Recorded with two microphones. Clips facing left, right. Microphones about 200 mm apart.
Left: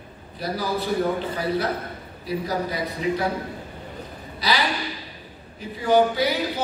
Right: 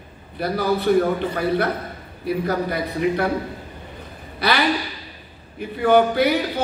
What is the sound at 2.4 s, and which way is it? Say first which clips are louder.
Speech: right 3 dB; 60° right (ahead or behind).